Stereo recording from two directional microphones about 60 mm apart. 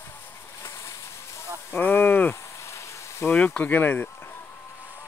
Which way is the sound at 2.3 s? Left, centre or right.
Left.